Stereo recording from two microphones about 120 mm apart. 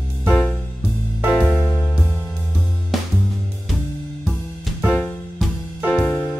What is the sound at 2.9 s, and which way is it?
Music, centre (ahead or behind).